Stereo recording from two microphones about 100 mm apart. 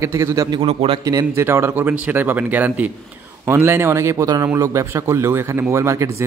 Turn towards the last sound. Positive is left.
turn(degrees=-30)  # may be behind; listen again after turning